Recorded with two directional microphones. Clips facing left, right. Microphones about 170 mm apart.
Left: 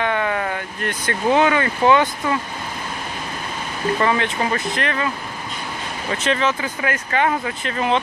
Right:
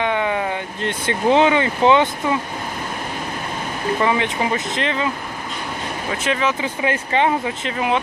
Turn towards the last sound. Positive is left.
turn(degrees=-10)  # may be behind; listen again after turning